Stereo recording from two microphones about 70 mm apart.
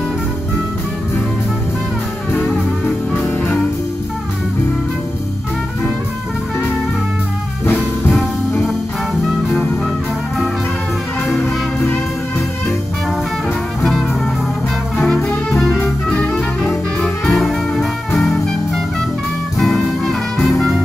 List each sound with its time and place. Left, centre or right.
8.1 s music: centre
11.4 s music: left
15.5 s music: centre
19.6 s music: centre